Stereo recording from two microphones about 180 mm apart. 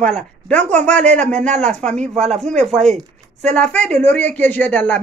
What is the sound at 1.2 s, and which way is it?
A man's voice, 40° right (ahead or behind).